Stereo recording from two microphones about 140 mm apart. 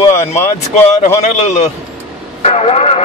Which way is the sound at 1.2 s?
55° left (ahead or behind).